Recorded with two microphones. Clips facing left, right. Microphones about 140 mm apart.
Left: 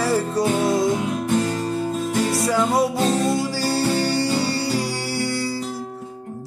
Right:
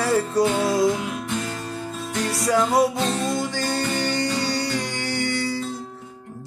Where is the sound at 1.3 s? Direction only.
45° left (ahead or behind).